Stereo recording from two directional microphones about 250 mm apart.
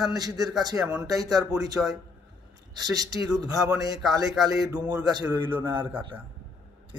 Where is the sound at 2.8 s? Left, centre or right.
Centre.